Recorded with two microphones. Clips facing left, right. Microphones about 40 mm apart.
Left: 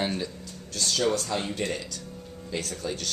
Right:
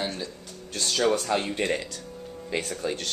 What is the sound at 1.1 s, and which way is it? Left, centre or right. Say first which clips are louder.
Speech: right 3 dB; right.